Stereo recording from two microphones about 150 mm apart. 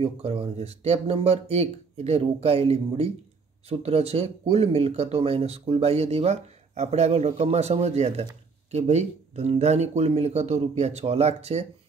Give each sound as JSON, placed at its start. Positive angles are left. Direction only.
{"t": 0.0, "sound": "speech", "side_deg": -40}